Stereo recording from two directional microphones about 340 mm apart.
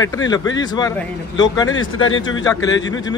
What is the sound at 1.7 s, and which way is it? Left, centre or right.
Speech, left.